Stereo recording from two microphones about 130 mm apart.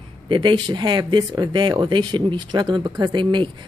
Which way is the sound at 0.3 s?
35° right (ahead or behind).